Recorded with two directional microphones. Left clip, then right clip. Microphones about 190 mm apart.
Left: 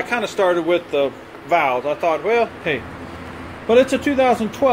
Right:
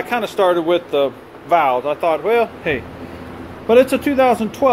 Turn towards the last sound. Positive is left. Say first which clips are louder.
# right 2 dB
turn(degrees=-5)  # may be behind; listen again after turning